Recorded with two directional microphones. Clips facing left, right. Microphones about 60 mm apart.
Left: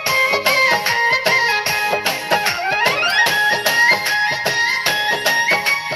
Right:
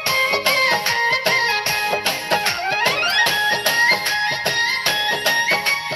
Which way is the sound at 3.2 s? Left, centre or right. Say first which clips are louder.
Left 3 dB; left.